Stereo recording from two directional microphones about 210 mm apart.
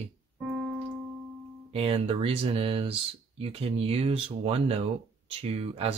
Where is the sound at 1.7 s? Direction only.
25° right (ahead or behind).